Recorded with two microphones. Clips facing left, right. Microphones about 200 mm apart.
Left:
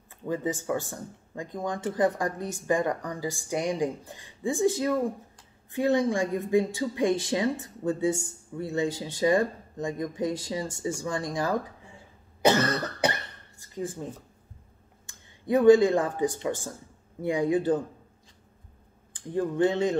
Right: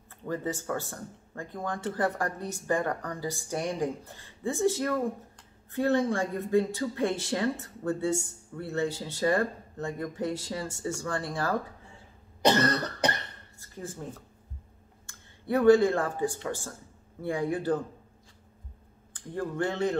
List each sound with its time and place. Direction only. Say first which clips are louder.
0.2 s speech: left 3 dB; 15° left (ahead or behind)
12.4 s cough: left 1 dB; 5° left (ahead or behind)
13.6 s a sound: left 6 dB; 15° left (ahead or behind)
15.0 s speech: left 3 dB; 15° left (ahead or behind)
19.1 s speech: left 5 dB; 15° left (ahead or behind)